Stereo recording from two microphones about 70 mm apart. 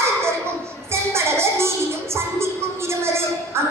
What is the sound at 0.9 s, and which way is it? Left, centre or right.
Music, right.